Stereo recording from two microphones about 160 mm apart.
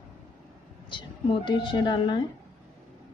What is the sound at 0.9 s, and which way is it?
A woman's voice, 30° left (ahead or behind).